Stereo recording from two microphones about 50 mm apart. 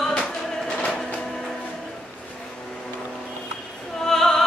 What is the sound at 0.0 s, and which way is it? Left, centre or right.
Music, centre.